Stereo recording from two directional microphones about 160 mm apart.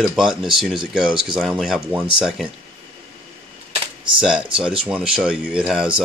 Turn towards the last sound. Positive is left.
turn(degrees=-5)  # may be behind; listen again after turning